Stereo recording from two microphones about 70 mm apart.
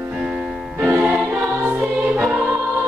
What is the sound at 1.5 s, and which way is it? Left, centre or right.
Choir, right.